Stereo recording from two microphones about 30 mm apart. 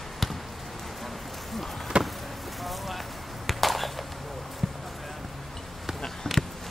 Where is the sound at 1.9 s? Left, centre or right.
Right.